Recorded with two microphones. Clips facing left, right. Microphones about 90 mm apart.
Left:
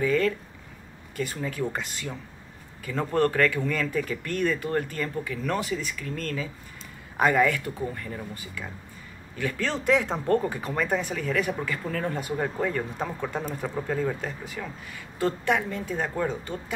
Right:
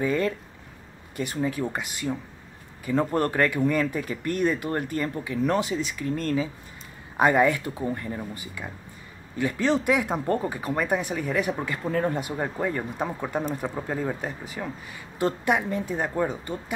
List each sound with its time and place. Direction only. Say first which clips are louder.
0.0 s speech: left 1 dB; 20° right (ahead or behind)